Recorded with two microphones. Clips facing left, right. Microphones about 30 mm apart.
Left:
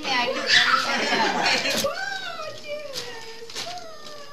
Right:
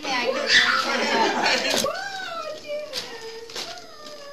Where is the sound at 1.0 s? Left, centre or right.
Centre.